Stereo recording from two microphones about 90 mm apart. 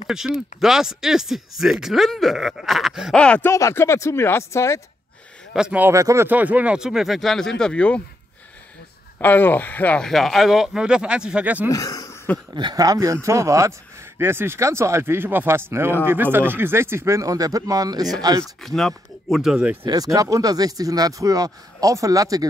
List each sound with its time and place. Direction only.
0.0 s speech: 5° right (ahead or behind)
3.2 s speech: 10° left (ahead or behind)
3.4 s speech: 30° left (ahead or behind)
5.7 s speech: 20° right (ahead or behind)
5.9 s speech: 35° right (ahead or behind)
6.2 s speech: 20° right (ahead or behind); by 8.0 s 15° left (ahead or behind)
9.2 s speech: 20° left (ahead or behind)
10.0 s speech: centre (ahead or behind); by 11.7 s 15° right (ahead or behind)
11.7 s a sound: 40° left (ahead or behind)
12.7 s speech: 45° right (ahead or behind)
18.4 s speech: 5° left (ahead or behind)
19.9 s speech: 45° right (ahead or behind)